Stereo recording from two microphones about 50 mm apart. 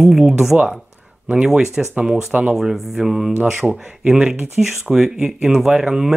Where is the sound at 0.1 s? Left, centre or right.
Centre.